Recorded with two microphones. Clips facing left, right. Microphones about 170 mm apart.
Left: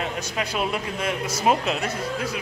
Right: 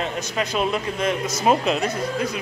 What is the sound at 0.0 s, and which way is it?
Speech, 10° left (ahead or behind).